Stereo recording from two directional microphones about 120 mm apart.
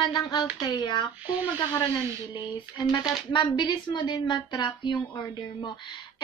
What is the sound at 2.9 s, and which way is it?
A woman's voice, 40° left (ahead or behind).